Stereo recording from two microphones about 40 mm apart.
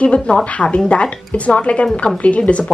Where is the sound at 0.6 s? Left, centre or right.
Left.